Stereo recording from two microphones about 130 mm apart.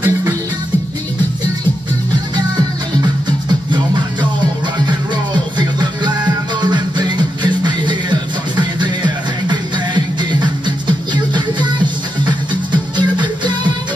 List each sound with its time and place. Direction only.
5.6 s music: 35° right (ahead or behind)
9.5 s music: 35° right (ahead or behind)